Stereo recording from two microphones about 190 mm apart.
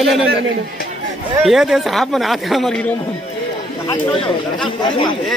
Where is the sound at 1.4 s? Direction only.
Centre (ahead or behind).